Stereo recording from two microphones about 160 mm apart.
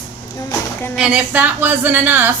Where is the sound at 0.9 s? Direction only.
5° right (ahead or behind).